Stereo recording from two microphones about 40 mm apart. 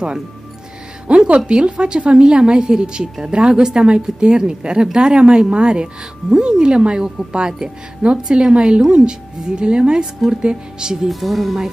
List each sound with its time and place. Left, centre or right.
1.0 s a woman's voice: right
11.1 s speech: centre